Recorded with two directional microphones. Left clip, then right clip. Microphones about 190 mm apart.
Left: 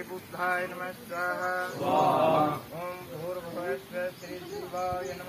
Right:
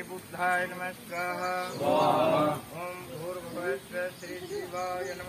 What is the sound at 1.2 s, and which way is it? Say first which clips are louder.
Mantra: left 1 dB; 55° right (ahead or behind).